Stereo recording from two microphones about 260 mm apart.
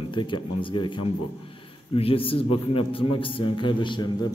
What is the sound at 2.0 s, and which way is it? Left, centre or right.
A man's voice, left.